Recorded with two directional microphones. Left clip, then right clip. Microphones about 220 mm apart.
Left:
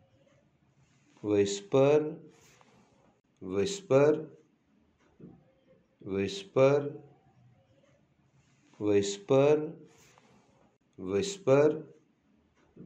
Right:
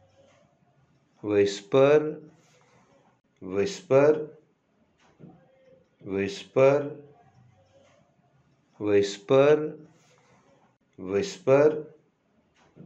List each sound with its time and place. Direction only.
1.2 s speech: 15° left (ahead or behind)
3.3 s speech: 25° left (ahead or behind)
6.0 s speech: 25° left (ahead or behind)
8.7 s speech: 15° left (ahead or behind)
11.0 s speech: 25° left (ahead or behind)